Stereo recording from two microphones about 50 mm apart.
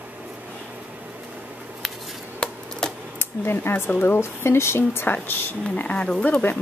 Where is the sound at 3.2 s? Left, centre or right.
Left.